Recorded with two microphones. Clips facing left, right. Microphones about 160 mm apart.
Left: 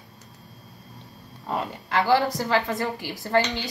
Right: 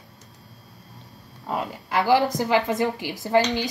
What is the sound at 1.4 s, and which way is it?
Speech, 5° right (ahead or behind).